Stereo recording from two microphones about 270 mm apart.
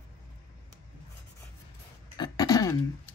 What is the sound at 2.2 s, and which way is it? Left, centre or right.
Throat clearing, centre.